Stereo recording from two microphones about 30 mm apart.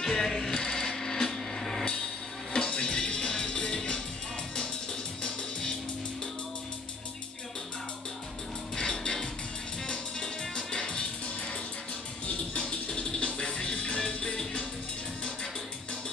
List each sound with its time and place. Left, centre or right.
0.0 s music: centre
0.6 s a sound: left
0.9 s a sound: centre
2.5 s music: left
5.2 s music: left
8.7 s music: left
12.9 s music: left